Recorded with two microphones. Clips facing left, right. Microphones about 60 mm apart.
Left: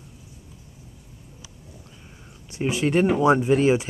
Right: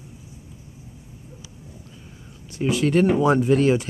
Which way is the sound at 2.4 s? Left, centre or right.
Left.